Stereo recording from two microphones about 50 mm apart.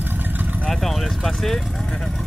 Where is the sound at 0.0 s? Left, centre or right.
Right.